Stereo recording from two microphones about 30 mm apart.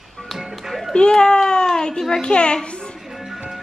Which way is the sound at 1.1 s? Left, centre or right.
Left.